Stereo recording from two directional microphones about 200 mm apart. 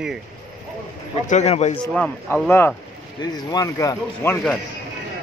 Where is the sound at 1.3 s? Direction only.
35° left (ahead or behind).